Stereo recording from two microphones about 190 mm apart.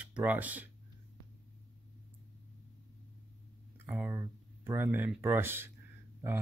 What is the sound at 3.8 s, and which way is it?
Speech, 10° right (ahead or behind).